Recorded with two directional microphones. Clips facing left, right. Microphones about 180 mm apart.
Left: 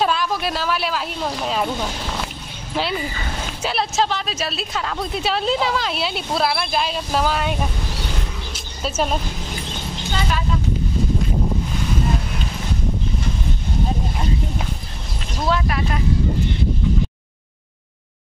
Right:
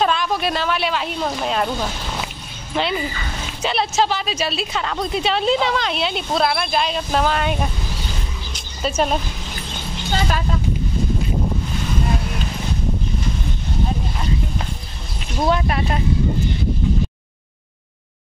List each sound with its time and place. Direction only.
0.0 s a woman's voice: 5° left (ahead or behind)
2.7 s a woman's voice: 5° left (ahead or behind)
8.8 s a woman's voice: centre (ahead or behind)
15.4 s speech: 25° right (ahead or behind)